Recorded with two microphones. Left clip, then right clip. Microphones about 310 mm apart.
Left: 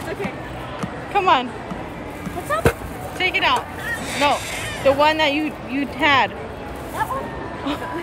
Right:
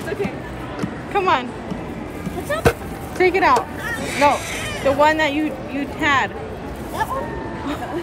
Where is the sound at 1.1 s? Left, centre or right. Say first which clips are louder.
Left 1 dB; centre.